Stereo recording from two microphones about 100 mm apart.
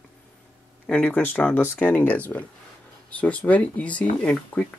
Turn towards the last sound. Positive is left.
turn(degrees=10)  # may be behind; listen again after turning